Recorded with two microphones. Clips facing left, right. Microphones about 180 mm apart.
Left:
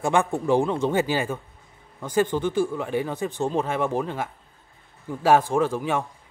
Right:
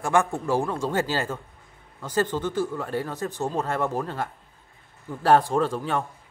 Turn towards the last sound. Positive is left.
turn(degrees=10)  # may be behind; listen again after turning